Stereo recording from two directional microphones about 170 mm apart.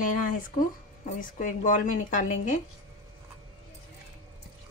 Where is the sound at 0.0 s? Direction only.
50° left (ahead or behind).